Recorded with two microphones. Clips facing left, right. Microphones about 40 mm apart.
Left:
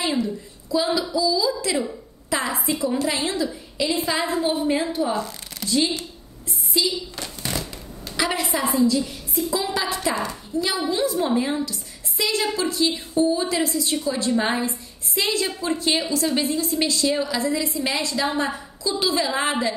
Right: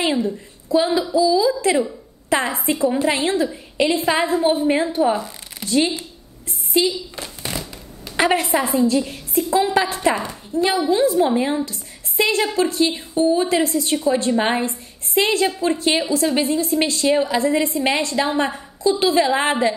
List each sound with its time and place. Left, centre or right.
0.0 s a woman's voice: right
5.1 s a sound: centre
5.7 s a woman's voice: right
8.2 s a woman's voice: right